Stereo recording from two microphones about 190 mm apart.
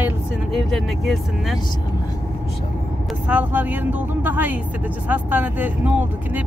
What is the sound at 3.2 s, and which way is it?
Speech, 10° right (ahead or behind).